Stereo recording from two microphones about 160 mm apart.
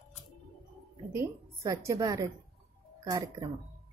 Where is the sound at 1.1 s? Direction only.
20° right (ahead or behind).